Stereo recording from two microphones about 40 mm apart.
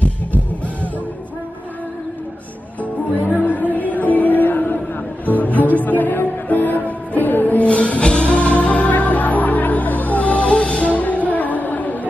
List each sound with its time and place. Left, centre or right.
3.3 s a sound: left
3.7 s music: left
5.2 s music: left
7.6 s music: left